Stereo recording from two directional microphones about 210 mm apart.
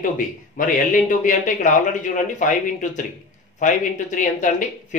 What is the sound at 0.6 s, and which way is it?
Speech, 40° left (ahead or behind).